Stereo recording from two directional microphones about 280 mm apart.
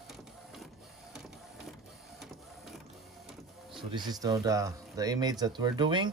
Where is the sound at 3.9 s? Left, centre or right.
Centre.